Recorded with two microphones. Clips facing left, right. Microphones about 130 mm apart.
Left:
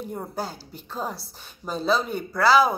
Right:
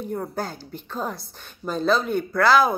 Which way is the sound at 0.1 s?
10° left (ahead or behind).